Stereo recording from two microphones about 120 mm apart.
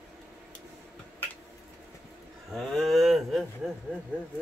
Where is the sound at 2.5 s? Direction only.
Centre (ahead or behind).